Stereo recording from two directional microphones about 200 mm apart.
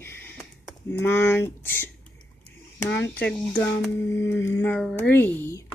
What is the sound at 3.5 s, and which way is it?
Speech, 10° left (ahead or behind).